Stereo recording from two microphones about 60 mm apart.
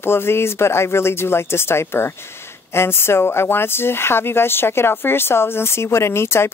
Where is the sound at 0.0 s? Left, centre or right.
Left.